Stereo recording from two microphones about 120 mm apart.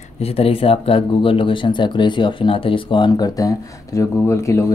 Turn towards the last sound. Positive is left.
turn(degrees=25)  # may be behind; listen again after turning